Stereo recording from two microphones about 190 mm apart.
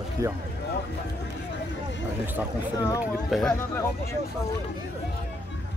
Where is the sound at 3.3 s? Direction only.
Centre (ahead or behind).